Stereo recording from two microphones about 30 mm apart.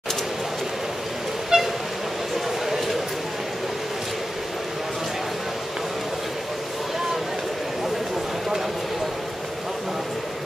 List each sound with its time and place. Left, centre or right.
1.5 s toot: right